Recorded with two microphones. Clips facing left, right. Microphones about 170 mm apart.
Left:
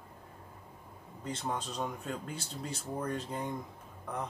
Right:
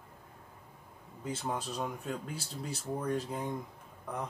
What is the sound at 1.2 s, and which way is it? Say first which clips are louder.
Speech: even; 5° right (ahead or behind).